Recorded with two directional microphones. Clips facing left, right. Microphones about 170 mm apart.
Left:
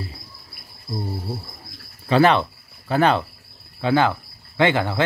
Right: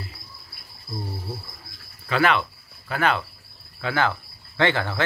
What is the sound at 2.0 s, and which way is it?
Speech, 30° left (ahead or behind).